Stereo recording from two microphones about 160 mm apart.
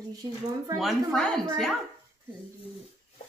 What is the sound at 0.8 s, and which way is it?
Speech, 5° left (ahead or behind).